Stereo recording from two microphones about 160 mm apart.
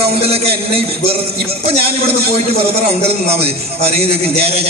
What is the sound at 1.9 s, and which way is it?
A man's voice, 40° right (ahead or behind).